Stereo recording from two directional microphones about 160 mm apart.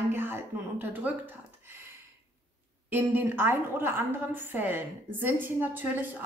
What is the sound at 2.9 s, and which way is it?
A woman's voice, 10° right (ahead or behind).